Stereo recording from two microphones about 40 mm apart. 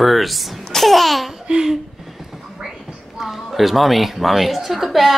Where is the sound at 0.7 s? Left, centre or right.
Centre.